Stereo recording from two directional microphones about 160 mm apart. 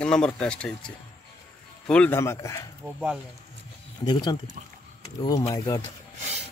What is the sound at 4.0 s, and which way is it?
Speech, 25° left (ahead or behind).